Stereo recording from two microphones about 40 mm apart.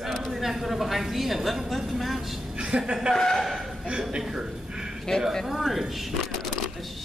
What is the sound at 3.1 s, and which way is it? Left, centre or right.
Speech, centre.